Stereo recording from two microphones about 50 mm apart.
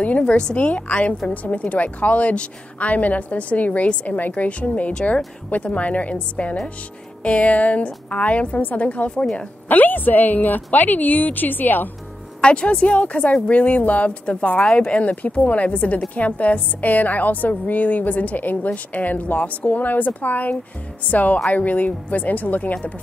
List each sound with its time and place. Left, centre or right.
0.3 s a woman's voice: left
9.2 s speech: centre
9.7 s a woman's voice: left
12.4 s a woman's voice: left